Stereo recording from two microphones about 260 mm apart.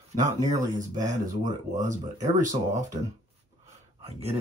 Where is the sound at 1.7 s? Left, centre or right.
Right.